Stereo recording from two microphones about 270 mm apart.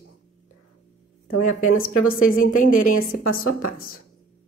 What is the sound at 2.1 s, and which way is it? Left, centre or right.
Speech, left.